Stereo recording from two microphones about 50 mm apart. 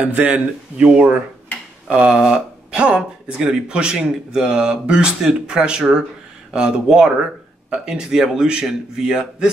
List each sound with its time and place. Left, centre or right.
0.0 s speech: right
0.7 s speech: centre